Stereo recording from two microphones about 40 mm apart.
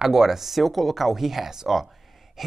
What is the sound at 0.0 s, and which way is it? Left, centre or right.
Speech, centre.